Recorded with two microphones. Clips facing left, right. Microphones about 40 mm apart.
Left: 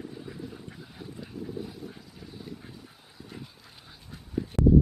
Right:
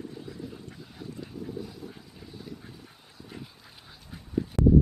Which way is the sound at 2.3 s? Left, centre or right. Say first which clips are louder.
Even; centre.